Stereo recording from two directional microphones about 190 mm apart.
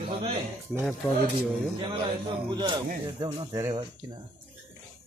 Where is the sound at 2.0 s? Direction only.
25° right (ahead or behind).